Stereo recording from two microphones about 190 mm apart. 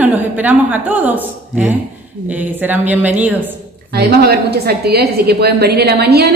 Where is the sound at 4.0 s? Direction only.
55° right (ahead or behind).